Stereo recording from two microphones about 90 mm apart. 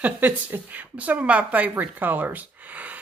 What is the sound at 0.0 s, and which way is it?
Speech, 20° right (ahead or behind).